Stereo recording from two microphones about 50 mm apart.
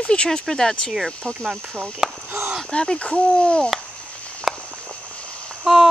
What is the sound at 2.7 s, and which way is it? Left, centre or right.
Speech, centre.